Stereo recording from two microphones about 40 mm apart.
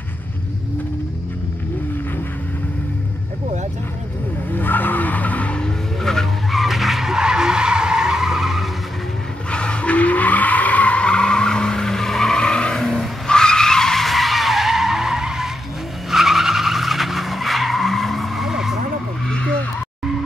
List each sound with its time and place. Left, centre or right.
4.6 s skidding: left
5.6 s vehicle: centre
6.5 s skidding: centre
9.5 s skidding: left
14.0 s skidding: centre
18.4 s vehicle: centre
19.2 s vehicle: left